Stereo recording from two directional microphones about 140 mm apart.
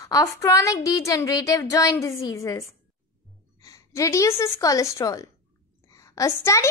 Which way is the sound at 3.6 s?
20° left (ahead or behind).